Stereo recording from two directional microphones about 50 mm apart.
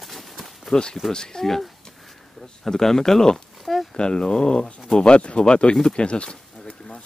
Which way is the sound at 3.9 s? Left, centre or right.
Centre.